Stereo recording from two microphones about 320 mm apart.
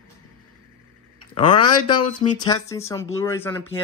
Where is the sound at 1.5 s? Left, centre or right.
Left.